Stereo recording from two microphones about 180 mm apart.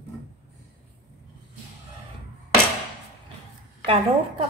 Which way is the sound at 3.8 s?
30° right (ahead or behind).